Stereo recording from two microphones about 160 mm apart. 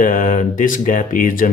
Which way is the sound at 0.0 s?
55° left (ahead or behind).